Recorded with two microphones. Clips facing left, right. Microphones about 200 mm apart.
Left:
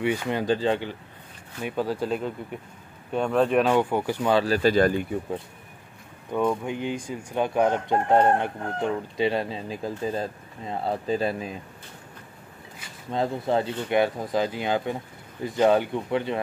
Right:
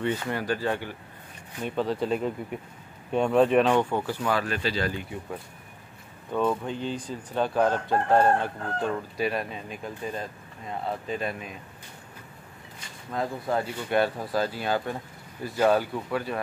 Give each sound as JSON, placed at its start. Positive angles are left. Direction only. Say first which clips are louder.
{"t": 0.0, "sound": "speech", "louder": "left 3 dB", "side_deg": 10}
{"t": 1.6, "sound": "speech", "louder": "even", "side_deg": 5}
{"t": 3.9, "sound": "speech", "louder": "left 3 dB", "side_deg": 15}
{"t": 4.2, "sound": "speech", "louder": "left 8 dB", "side_deg": 25}
{"t": 4.6, "sound": "speech", "louder": "left 9 dB", "side_deg": 50}
{"t": 6.3, "sound": "speech", "louder": "left 1 dB", "side_deg": 15}
{"t": 13.1, "sound": "speech", "louder": "left 4 dB", "side_deg": 25}
{"t": 13.8, "sound": "speech", "louder": "left 2 dB", "side_deg": 15}